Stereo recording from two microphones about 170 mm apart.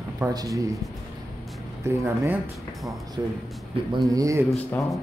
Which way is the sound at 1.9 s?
10° right (ahead or behind).